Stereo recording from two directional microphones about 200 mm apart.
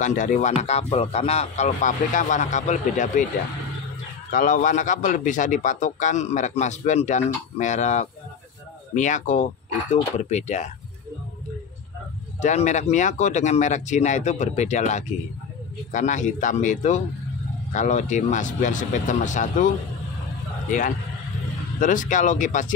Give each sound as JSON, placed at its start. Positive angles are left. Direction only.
{"t": 0.0, "sound": "a man's voice", "side_deg": 40}
{"t": 4.3, "sound": "a man's voice", "side_deg": 40}
{"t": 12.4, "sound": "a man's voice", "side_deg": 35}
{"t": 21.7, "sound": "a man's voice", "side_deg": 40}